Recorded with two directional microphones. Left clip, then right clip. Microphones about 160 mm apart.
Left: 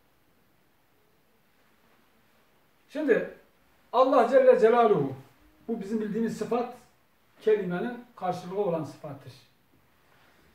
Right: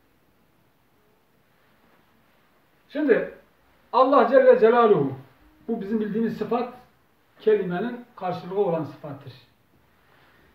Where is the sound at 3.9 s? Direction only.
10° right (ahead or behind).